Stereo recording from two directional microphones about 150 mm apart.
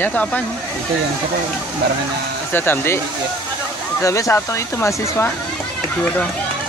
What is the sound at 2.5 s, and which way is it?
Speech, 15° left (ahead or behind).